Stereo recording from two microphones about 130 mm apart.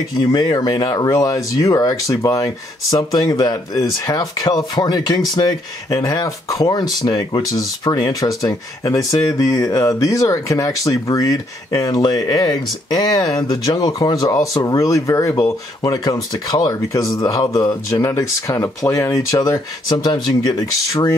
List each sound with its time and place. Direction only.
0.2 s speech: 30° left (ahead or behind)